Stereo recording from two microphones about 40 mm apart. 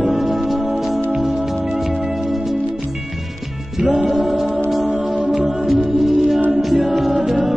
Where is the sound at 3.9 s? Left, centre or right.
Right.